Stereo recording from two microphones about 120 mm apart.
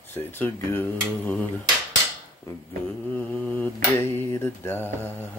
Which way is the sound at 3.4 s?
15° left (ahead or behind).